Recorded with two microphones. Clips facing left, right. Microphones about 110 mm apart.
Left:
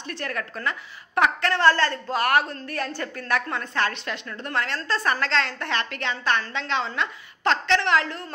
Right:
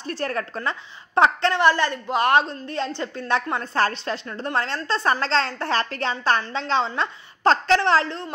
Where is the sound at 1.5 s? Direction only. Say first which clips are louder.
Right 1 dB; 15° right (ahead or behind).